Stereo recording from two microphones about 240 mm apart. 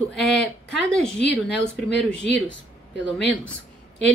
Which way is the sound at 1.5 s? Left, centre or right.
Left.